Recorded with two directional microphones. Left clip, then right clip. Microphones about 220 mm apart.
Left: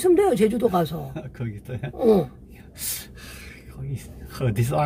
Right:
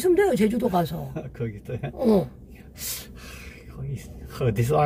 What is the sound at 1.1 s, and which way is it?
Speech, 20° left (ahead or behind).